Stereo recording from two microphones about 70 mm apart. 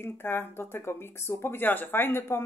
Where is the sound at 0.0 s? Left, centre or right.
Left.